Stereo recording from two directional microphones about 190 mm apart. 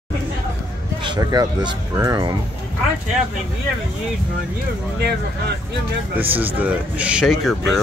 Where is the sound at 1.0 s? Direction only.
20° right (ahead or behind).